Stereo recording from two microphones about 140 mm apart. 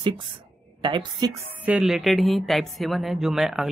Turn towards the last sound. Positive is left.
turn(degrees=-5)  # may be behind; listen again after turning